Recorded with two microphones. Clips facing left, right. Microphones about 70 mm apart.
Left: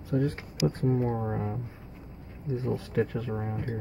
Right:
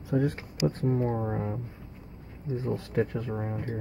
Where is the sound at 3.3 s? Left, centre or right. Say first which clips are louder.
Even; centre.